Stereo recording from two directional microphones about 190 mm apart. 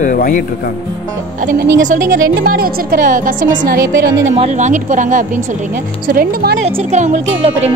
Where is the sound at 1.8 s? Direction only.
45° right (ahead or behind).